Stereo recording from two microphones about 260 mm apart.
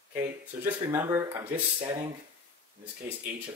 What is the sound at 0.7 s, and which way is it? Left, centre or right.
Speech, centre.